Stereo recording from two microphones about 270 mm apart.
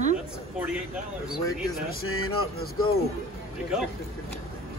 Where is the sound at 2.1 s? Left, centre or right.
Left.